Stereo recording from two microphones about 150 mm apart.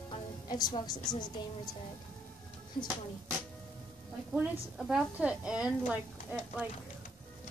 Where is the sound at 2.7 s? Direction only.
70° left (ahead or behind).